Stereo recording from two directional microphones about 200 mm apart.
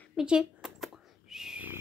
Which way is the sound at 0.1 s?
5° right (ahead or behind).